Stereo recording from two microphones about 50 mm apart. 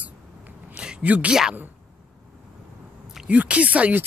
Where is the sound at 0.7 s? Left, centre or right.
Centre.